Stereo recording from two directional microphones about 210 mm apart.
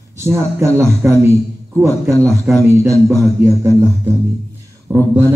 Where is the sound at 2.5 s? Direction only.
10° right (ahead or behind).